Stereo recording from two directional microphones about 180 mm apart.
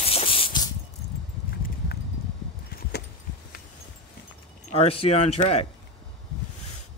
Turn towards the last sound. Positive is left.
turn(degrees=35)  # may be behind; listen again after turning